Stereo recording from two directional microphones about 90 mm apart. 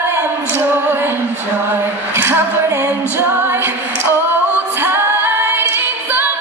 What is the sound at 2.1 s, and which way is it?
A capella, 25° right (ahead or behind).